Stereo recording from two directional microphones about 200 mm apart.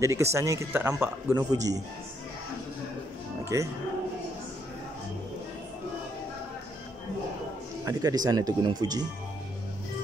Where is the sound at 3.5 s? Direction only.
15° right (ahead or behind).